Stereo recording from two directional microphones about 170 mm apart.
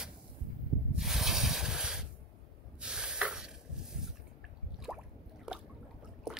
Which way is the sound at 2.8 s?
5° right (ahead or behind).